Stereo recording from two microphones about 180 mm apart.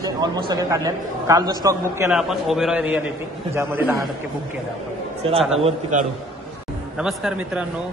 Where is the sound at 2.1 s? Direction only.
Centre (ahead or behind).